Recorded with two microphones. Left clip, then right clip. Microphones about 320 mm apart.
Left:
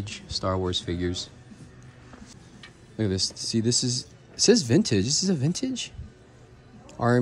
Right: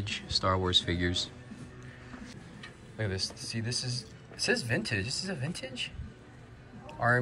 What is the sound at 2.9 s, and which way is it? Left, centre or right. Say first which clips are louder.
Speech: left 7 dB; left.